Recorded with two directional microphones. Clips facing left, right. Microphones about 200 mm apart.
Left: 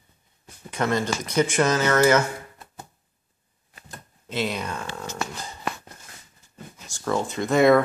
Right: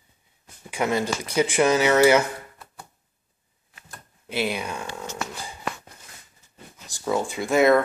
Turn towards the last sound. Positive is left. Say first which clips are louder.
# left 1 dB
turn(degrees=-5)  # may be behind; listen again after turning